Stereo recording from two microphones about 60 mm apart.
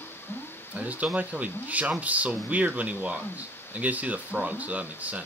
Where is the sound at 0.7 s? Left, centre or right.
Right.